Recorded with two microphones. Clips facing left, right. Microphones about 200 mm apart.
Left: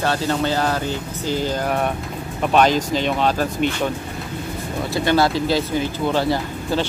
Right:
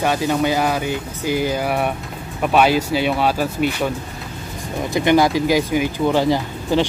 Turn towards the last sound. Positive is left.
turn(degrees=-15)  # may be behind; listen again after turning